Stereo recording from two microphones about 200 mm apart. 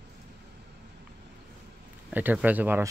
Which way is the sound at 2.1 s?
10° right (ahead or behind).